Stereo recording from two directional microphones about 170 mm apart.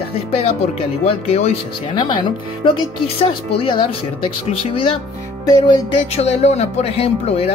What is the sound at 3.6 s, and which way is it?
Speech, 35° left (ahead or behind).